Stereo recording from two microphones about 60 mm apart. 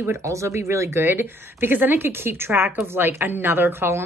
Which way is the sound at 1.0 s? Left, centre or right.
Right.